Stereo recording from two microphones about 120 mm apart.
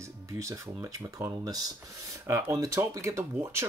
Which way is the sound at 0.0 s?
25° right (ahead or behind).